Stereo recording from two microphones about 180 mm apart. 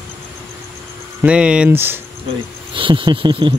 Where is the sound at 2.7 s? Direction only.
30° right (ahead or behind).